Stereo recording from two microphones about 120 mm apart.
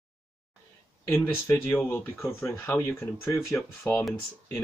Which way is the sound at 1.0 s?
20° left (ahead or behind).